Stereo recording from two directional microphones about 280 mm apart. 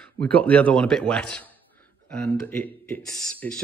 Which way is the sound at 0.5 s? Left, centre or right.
Centre.